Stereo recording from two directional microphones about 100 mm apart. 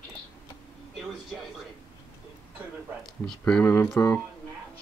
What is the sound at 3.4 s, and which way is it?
Speech, 15° left (ahead or behind).